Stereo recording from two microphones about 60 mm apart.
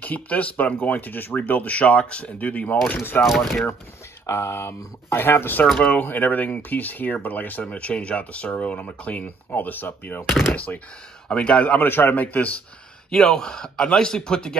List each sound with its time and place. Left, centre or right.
0.0 s speech: left
2.9 s speech: left
3.3 s speech: centre
4.3 s speech: left
10.2 s speech: centre
10.5 s speech: left
11.8 s speech: left
13.1 s a man's voice: centre